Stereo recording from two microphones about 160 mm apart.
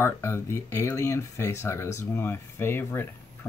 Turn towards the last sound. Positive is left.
turn(degrees=15)  # may be behind; listen again after turning